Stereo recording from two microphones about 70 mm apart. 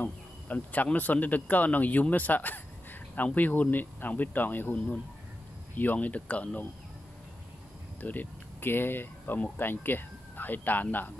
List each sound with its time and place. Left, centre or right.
0.0 s speech: left
8.0 s speech: left